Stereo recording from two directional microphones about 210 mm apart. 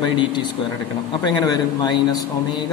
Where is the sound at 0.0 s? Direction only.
20° left (ahead or behind).